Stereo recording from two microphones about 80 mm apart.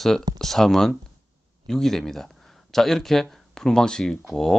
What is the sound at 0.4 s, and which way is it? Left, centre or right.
Speech, centre.